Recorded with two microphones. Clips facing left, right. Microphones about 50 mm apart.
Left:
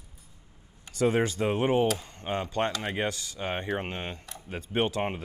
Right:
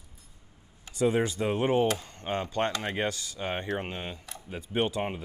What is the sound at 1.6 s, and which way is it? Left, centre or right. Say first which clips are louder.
Speech: even; centre.